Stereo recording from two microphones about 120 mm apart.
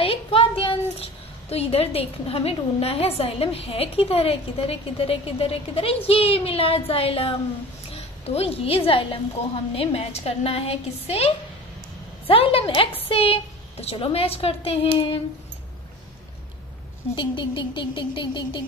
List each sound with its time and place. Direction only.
0.0 s child singing: 50° left (ahead or behind)
1.5 s a woman's voice: 55° left (ahead or behind)
17.1 s a sound: 40° left (ahead or behind)